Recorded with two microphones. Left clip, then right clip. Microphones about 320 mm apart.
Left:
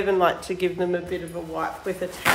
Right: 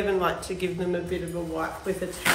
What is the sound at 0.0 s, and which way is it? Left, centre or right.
Speech, left.